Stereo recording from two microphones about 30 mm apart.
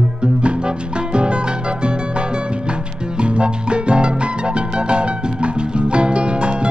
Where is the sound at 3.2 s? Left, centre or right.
Right.